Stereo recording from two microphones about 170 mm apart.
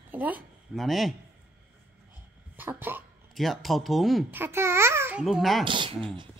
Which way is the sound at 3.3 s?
Centre (ahead or behind).